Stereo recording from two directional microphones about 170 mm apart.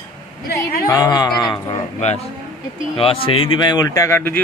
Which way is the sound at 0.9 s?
20° left (ahead or behind).